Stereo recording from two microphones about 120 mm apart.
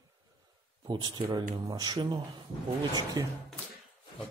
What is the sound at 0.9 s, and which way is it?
Speech, 35° right (ahead or behind).